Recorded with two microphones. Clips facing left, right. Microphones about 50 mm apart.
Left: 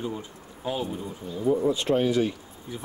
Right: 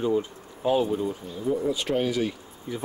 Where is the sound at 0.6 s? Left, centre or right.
Right.